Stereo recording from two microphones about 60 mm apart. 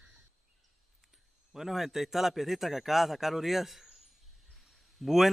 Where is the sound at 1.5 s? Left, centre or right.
Centre.